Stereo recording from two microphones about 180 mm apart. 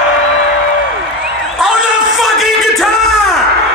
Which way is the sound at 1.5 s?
Centre (ahead or behind).